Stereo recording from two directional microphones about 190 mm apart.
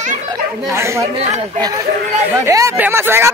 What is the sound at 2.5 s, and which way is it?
Speech, 15° right (ahead or behind).